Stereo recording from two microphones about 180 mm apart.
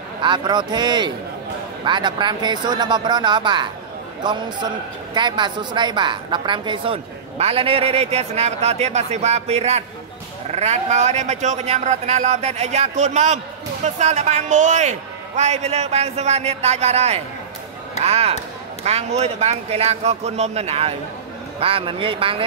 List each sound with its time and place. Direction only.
0.2 s speech: 25° right (ahead or behind)